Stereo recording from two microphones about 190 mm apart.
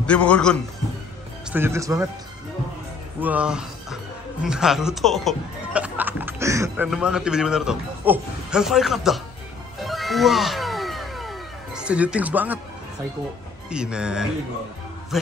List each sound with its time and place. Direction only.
0.0 s a man's voice: 5° left (ahead or behind)
1.5 s speech: 15° right (ahead or behind)
3.2 s speech: 5° right (ahead or behind)
6.9 s a man's voice: 5° right (ahead or behind)
9.8 s music: centre (ahead or behind)
13.7 s a man's voice: 5° right (ahead or behind)